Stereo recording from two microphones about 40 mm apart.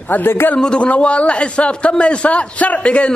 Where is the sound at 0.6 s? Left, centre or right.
Left.